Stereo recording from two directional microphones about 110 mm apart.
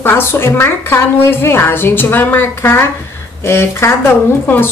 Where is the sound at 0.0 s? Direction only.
20° left (ahead or behind).